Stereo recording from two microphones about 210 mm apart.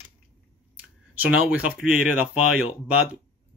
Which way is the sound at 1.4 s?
5° right (ahead or behind).